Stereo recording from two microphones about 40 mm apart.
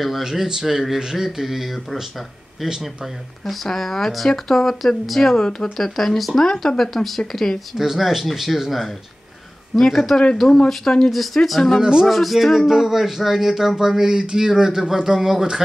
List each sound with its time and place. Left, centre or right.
0.2 s speech: centre
3.6 s speech: centre
5.4 s speech: centre
5.8 s speech: centre
6.4 s speech: centre
6.8 s speech: centre
7.7 s speech: centre
11.8 s speech: centre
12.1 s speech: centre